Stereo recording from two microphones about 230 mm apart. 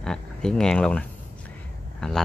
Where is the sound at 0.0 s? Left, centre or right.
Centre.